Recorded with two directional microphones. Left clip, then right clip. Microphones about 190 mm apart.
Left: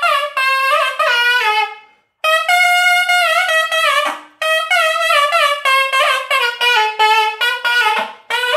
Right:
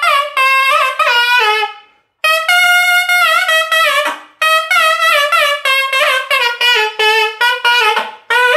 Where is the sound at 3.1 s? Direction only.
5° left (ahead or behind).